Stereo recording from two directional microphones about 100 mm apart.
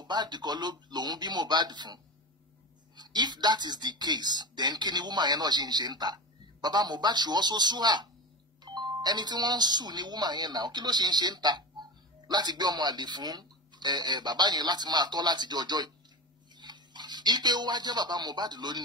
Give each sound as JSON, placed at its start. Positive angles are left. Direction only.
{"t": 0.0, "sound": "speech", "side_deg": -45}
{"t": 3.0, "sound": "speech", "side_deg": -45}